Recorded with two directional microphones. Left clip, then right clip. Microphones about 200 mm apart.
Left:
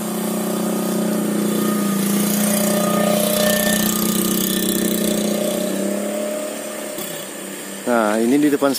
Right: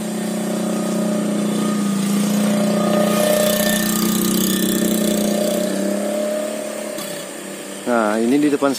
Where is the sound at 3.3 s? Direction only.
30° right (ahead or behind); by 6.3 s 45° right (ahead or behind).